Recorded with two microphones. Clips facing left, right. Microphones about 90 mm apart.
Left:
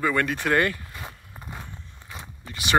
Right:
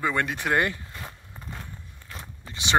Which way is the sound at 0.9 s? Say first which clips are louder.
Left 1 dB; 10° left (ahead or behind).